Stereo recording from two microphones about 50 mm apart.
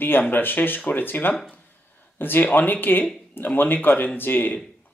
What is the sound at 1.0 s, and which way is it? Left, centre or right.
Speech, left.